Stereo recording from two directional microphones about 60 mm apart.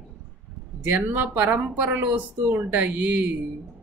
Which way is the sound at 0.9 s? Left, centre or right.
Right.